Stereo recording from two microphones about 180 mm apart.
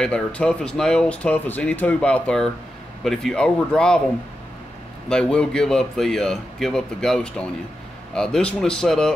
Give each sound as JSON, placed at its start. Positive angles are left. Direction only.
{"t": 0.0, "sound": "speech", "side_deg": 5}
{"t": 5.1, "sound": "speech", "side_deg": 5}